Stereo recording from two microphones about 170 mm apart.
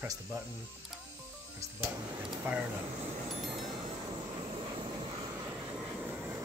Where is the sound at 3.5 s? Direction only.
30° right (ahead or behind).